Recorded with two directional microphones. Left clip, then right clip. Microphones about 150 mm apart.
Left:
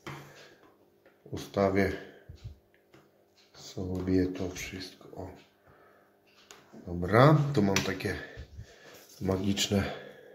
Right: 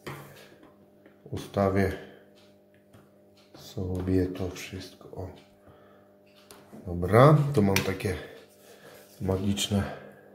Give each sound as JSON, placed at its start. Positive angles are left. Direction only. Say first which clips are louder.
{"t": 1.3, "sound": "speech", "louder": "right 1 dB", "side_deg": 0}
{"t": 3.5, "sound": "speech", "louder": "right 2 dB", "side_deg": 0}
{"t": 6.9, "sound": "speech", "louder": "right 3 dB", "side_deg": 0}
{"t": 9.2, "sound": "speech", "louder": "right 1 dB", "side_deg": 20}